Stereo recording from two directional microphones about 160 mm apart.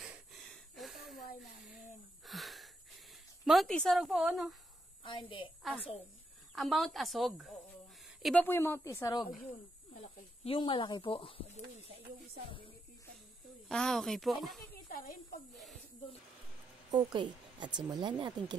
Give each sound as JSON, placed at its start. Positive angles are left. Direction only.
{"t": 0.0, "sound": "a sound", "side_deg": -5}
{"t": 2.2, "sound": "a sound", "side_deg": 0}
{"t": 5.6, "sound": "a woman's voice", "side_deg": -5}
{"t": 8.0, "sound": "a sound", "side_deg": 0}
{"t": 8.5, "sound": "a woman's voice", "side_deg": 15}
{"t": 10.4, "sound": "speech", "side_deg": 35}
{"t": 13.7, "sound": "speech", "side_deg": 5}
{"t": 14.7, "sound": "a woman's voice", "side_deg": 60}
{"t": 15.5, "sound": "speech", "side_deg": 0}
{"t": 16.9, "sound": "a woman's voice", "side_deg": -30}